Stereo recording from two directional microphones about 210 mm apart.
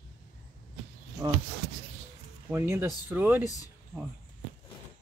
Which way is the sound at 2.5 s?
10° right (ahead or behind).